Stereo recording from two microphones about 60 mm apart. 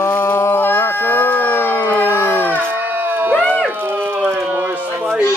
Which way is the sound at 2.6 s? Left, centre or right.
Right.